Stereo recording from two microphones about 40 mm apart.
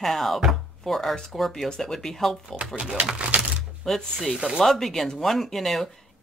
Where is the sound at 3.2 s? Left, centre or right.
Right.